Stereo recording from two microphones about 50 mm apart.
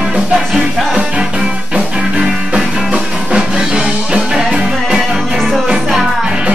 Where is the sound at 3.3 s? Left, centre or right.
Centre.